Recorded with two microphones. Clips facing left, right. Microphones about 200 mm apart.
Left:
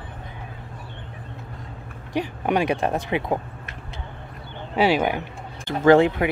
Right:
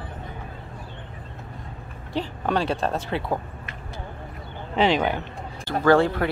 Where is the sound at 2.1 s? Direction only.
15° left (ahead or behind).